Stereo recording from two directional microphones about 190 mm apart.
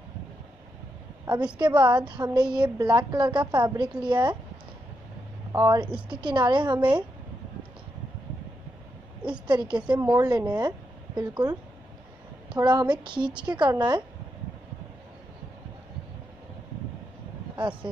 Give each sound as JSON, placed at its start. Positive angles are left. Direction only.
{"t": 1.2, "sound": "a woman's voice", "side_deg": -25}
{"t": 5.5, "sound": "a woman's voice", "side_deg": -20}
{"t": 9.5, "sound": "a woman's voice", "side_deg": -25}